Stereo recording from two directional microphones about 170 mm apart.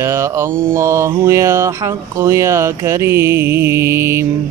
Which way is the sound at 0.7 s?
15° right (ahead or behind).